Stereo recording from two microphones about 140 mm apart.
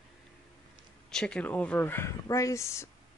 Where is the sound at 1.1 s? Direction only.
5° left (ahead or behind).